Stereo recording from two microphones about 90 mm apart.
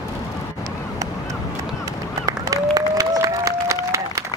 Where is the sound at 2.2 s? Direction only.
40° right (ahead or behind).